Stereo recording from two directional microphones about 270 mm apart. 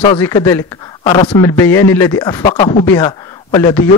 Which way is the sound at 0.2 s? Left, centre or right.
Centre.